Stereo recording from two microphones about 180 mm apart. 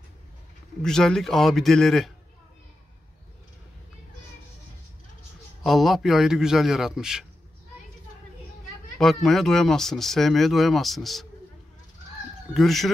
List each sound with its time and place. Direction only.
0.8 s speech: 5° left (ahead or behind)
5.6 s speech: centre (ahead or behind)
8.9 s speech: centre (ahead or behind)
12.5 s speech: centre (ahead or behind)